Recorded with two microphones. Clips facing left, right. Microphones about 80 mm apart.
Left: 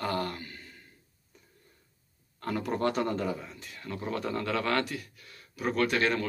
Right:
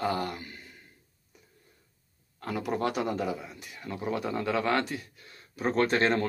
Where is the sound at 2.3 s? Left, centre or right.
Centre.